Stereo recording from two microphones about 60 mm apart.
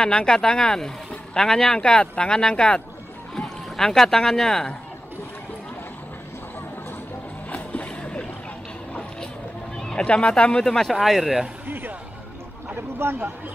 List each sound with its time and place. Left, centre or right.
0.0 s speech: centre
7.4 s splash: left
9.8 s a sound: centre
10.0 s speech: centre
11.6 s music: right
13.0 s speech: right